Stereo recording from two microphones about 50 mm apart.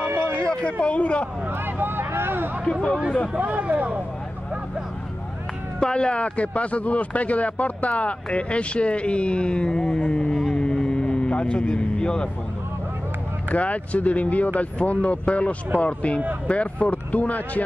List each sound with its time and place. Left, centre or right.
0.4 s speech: left
1.8 s speech: right
2.6 s speech: centre
3.3 s speech: right
5.8 s speech: centre
10.5 s vehicle: centre
13.5 s speech: left